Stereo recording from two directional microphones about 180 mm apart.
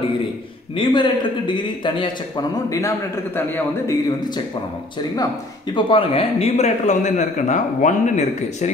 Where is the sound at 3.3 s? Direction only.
10° left (ahead or behind).